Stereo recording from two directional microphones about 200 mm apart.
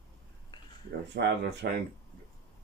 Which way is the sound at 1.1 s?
55° right (ahead or behind).